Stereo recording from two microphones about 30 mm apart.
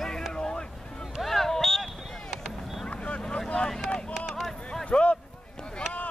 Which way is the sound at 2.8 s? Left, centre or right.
Left.